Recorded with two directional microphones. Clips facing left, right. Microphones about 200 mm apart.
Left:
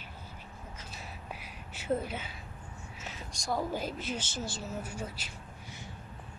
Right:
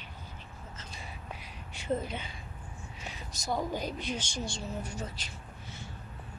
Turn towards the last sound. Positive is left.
turn(degrees=10)  # may be behind; listen again after turning